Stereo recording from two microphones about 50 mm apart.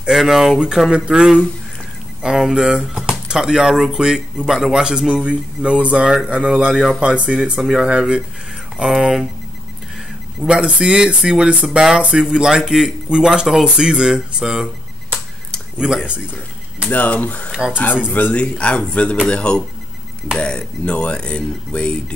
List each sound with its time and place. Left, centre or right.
0.1 s speech: centre
10.4 s speech: right
15.8 s speech: centre
16.9 s speech: left
17.5 s speech: centre
18.3 s speech: left